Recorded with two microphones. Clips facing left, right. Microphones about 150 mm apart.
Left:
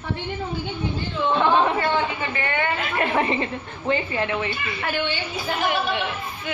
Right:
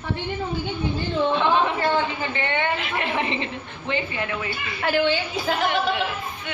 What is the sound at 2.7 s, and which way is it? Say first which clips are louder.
A woman's voice: left 3 dB; 45° left (ahead or behind).